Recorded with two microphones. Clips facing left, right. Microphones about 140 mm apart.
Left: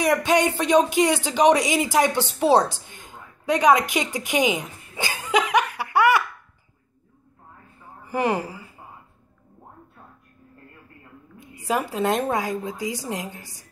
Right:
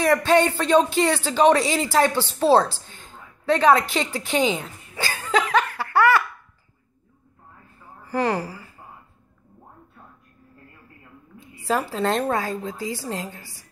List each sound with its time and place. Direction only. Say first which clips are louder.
0.0 s speech: right 2 dB; 15° left (ahead or behind)
8.0 s speech: even; 20° left (ahead or behind)
11.3 s a woman's voice: right 1 dB; 15° left (ahead or behind)